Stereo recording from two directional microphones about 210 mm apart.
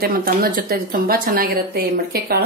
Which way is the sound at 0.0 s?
45° right (ahead or behind).